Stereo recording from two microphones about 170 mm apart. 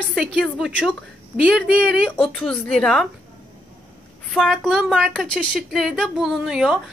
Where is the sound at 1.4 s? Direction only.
5° right (ahead or behind).